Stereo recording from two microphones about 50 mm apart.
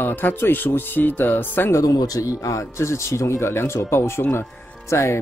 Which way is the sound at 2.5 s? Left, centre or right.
Left.